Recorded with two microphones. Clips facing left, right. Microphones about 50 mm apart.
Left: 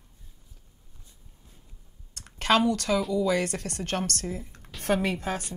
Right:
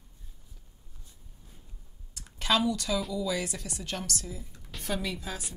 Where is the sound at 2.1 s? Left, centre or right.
Left.